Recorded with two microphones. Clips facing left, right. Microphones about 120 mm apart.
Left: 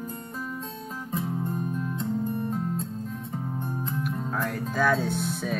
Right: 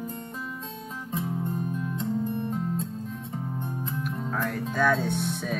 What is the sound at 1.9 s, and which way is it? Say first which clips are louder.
Music: right 1 dB; 40° left (ahead or behind).